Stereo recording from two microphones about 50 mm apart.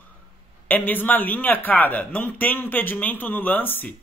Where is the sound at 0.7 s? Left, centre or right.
Left.